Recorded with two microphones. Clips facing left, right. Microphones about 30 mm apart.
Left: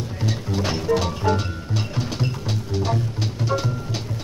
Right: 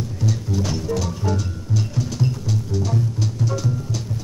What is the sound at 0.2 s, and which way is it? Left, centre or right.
Music, left.